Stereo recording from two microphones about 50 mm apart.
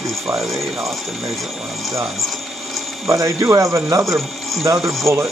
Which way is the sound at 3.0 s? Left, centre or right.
Right.